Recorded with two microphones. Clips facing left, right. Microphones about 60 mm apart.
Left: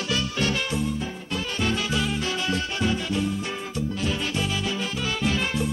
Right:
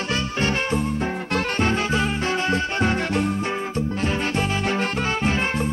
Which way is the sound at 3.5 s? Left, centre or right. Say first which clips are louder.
Right 4 dB; right.